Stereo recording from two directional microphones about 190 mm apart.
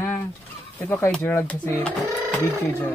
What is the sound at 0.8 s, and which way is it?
Speech, 10° left (ahead or behind).